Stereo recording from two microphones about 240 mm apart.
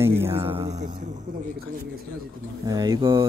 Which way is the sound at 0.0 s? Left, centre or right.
Centre.